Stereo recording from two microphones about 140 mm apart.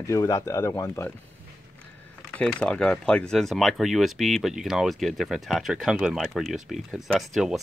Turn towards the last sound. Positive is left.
turn(degrees=0)  # may be behind; listen again after turning